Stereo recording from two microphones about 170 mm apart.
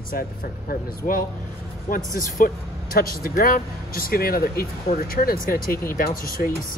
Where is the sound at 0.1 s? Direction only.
60° left (ahead or behind).